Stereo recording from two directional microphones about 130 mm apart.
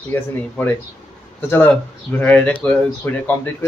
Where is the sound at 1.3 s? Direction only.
15° left (ahead or behind).